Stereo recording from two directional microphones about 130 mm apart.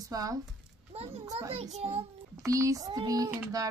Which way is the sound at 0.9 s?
50° right (ahead or behind).